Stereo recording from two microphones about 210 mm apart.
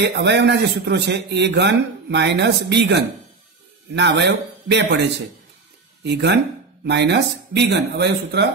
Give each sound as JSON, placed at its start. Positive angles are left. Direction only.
{"t": 0.0, "sound": "speech", "side_deg": -55}
{"t": 6.0, "sound": "speech", "side_deg": -55}